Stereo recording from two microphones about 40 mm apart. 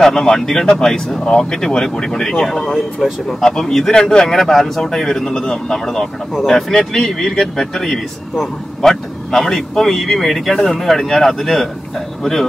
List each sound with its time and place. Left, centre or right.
0.0 s speech: centre
2.2 s speech: centre